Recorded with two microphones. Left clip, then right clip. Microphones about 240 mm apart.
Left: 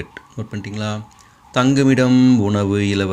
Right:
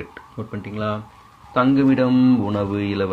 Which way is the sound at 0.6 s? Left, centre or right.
Left.